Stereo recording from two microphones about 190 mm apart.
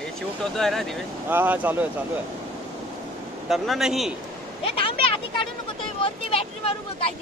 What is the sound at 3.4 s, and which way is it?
Speech, centre (ahead or behind).